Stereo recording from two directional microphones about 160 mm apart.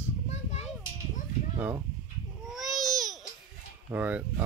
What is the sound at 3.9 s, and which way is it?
Speech, 10° right (ahead or behind).